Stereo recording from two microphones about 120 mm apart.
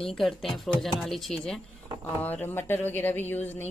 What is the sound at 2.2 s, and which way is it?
A woman's voice, 15° left (ahead or behind).